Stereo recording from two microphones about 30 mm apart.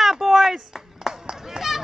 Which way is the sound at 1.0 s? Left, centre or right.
Centre.